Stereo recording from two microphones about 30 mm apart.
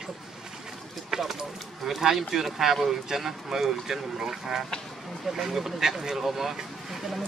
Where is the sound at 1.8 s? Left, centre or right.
Centre.